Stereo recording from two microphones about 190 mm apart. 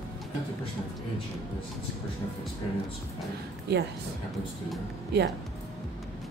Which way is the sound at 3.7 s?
60° right (ahead or behind).